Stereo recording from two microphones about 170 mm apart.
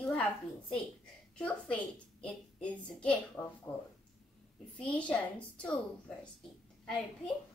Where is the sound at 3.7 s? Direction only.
15° left (ahead or behind).